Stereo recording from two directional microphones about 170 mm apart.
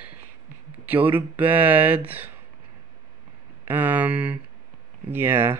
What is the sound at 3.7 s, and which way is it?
Speech, 10° right (ahead or behind).